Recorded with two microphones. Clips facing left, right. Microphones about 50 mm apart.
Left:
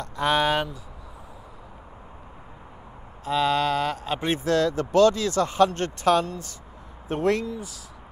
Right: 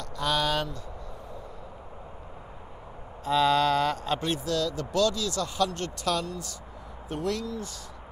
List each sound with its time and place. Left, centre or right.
0.0 s speech: left
3.3 s mantra: centre
4.2 s speech: left